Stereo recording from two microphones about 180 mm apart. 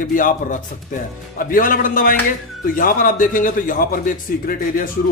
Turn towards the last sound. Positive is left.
turn(degrees=50)  # may be behind; listen again after turning